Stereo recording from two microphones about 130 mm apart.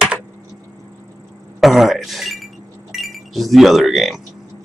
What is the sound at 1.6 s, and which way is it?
Speech, centre (ahead or behind).